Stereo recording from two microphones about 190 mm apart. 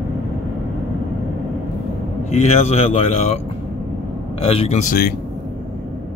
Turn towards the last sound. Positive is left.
turn(degrees=40)  # may be behind; listen again after turning